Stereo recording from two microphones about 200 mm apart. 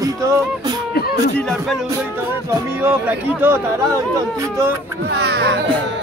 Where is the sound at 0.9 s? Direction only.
50° left (ahead or behind).